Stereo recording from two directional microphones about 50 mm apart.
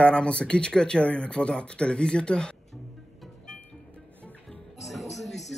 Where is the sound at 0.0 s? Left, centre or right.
Centre.